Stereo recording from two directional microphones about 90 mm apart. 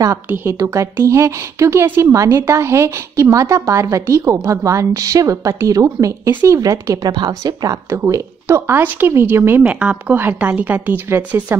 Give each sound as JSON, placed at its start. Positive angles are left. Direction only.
{"t": 0.3, "sound": "a woman's voice", "side_deg": -25}
{"t": 7.1, "sound": "a woman's voice", "side_deg": -50}
{"t": 7.9, "sound": "speech", "side_deg": -30}
{"t": 9.7, "sound": "speech", "side_deg": -15}